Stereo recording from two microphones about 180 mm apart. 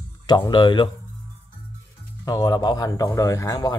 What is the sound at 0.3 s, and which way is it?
Speech, 25° left (ahead or behind).